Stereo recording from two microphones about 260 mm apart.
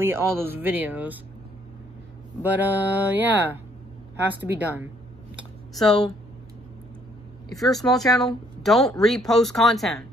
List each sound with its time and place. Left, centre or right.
0.0 s speech: centre
2.4 s speech: centre
4.4 s speech: centre
5.3 s a sound: centre
7.4 s a woman's voice: centre